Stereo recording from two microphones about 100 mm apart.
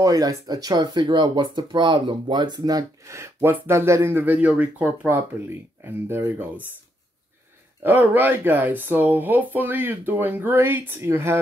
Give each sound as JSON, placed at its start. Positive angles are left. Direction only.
{"t": 0.0, "sound": "speech", "side_deg": -35}
{"t": 7.8, "sound": "speech", "side_deg": -20}